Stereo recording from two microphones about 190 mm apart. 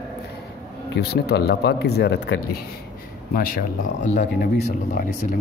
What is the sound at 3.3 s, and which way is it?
A man's voice, 50° left (ahead or behind).